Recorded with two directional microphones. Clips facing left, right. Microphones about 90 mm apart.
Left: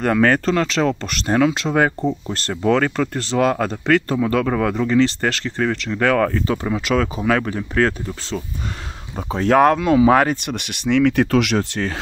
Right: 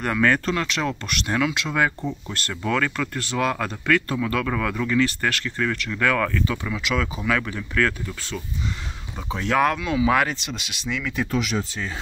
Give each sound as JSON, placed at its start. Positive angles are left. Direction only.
{"t": 0.0, "sound": "speech", "side_deg": 35}